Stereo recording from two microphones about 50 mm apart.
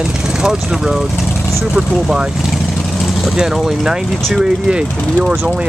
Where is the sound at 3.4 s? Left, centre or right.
Centre.